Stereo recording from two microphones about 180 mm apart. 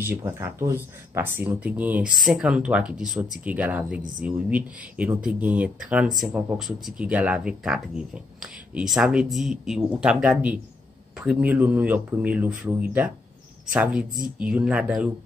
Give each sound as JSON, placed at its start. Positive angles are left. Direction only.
{"t": 0.0, "sound": "speech", "side_deg": -10}
{"t": 14.4, "sound": "speech", "side_deg": -5}